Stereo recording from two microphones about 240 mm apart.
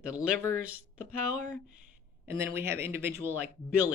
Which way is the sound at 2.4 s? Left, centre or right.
Centre.